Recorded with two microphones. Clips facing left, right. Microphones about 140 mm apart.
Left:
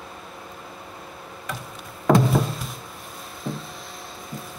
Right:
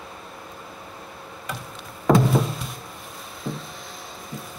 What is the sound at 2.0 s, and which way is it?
Music, centre (ahead or behind).